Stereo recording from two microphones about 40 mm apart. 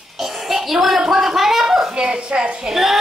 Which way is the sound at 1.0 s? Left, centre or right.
Centre.